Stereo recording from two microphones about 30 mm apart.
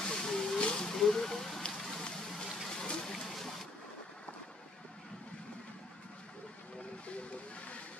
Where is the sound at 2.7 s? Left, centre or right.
Left.